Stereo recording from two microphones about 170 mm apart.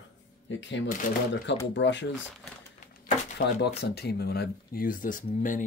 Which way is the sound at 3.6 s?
75° left (ahead or behind).